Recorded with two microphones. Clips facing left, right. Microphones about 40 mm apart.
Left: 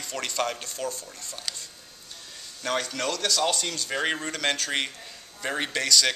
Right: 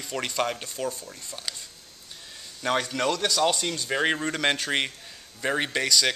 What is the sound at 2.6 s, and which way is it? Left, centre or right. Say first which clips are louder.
Speech: right 3 dB; centre.